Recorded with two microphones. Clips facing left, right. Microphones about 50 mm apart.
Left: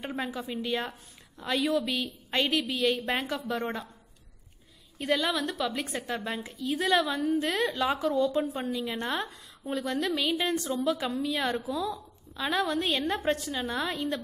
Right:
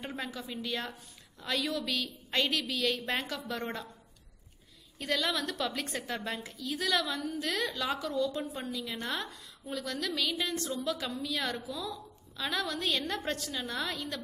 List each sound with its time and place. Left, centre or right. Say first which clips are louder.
0.0 s a woman's voice: left 5 dB; centre
4.9 s a woman's voice: left 4 dB; centre
6.4 s a woman's voice: left 5 dB; left